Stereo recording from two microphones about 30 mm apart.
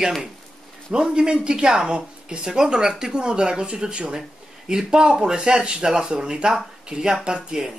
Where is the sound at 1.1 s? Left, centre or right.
Right.